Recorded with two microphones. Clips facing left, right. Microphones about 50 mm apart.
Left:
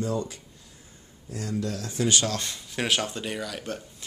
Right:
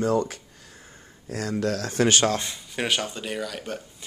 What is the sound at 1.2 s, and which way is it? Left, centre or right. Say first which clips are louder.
Speech: right 4 dB; right.